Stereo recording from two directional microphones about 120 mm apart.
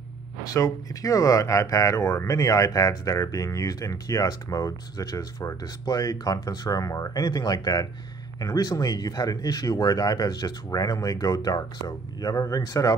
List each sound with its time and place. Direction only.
0.5 s speech: 30° left (ahead or behind)